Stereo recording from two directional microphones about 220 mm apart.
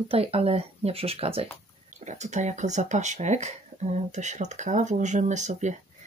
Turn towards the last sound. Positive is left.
turn(degrees=-35)  # may be behind; listen again after turning